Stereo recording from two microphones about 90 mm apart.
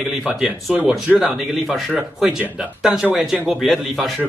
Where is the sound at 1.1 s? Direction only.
Centre (ahead or behind).